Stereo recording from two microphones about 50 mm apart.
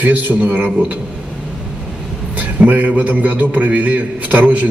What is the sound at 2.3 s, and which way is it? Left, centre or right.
A man's voice, right.